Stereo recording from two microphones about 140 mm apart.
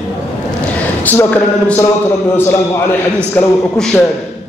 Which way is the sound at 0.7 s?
10° left (ahead or behind).